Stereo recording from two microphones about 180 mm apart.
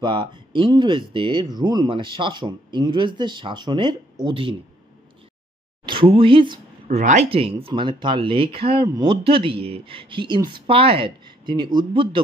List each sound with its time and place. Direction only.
0.0 s speech: 25° right (ahead or behind)
5.9 s speech: 30° right (ahead or behind)
7.0 s speech: 40° right (ahead or behind)